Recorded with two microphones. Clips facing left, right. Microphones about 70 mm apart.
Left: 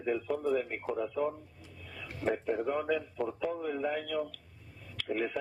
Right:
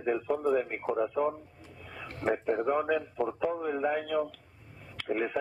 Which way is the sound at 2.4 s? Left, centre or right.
Right.